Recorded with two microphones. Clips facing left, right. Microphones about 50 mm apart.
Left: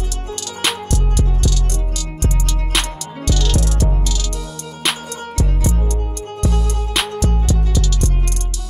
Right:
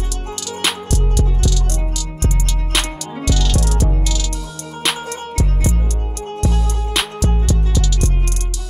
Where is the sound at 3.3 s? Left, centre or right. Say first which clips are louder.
Even; centre.